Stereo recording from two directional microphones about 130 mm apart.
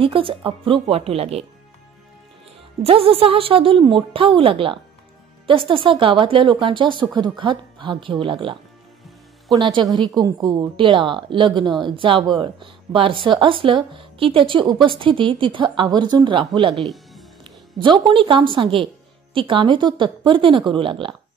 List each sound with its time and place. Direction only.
0.0 s a woman's voice: 40° right (ahead or behind)
2.8 s a woman's voice: 45° right (ahead or behind)
16.7 s speech: centre (ahead or behind)
17.4 s a woman's voice: 40° right (ahead or behind)